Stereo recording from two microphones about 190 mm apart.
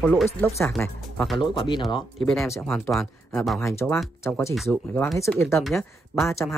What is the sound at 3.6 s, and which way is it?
Speech, 15° left (ahead or behind).